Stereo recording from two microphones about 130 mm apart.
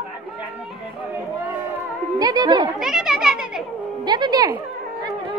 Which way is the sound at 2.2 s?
30° right (ahead or behind).